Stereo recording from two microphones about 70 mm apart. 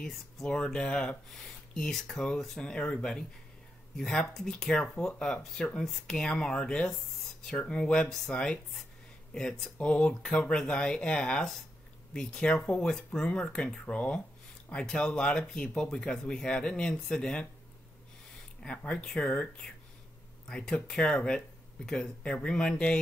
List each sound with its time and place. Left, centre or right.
0.0 s speech: centre
18.8 s speech: centre